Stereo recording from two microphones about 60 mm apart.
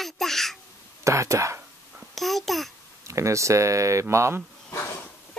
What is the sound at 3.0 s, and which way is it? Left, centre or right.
Speech, right.